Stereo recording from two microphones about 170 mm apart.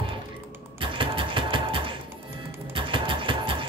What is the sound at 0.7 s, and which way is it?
Music, 30° right (ahead or behind).